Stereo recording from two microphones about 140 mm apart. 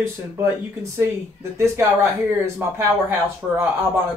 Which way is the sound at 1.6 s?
20° right (ahead or behind).